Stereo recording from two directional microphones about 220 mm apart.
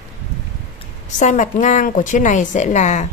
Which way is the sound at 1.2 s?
35° left (ahead or behind).